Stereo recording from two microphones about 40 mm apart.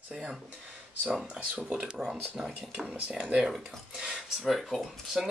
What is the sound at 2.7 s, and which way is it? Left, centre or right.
Speech, right.